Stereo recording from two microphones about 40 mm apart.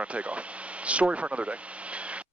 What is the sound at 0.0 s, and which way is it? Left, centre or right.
Speech, right.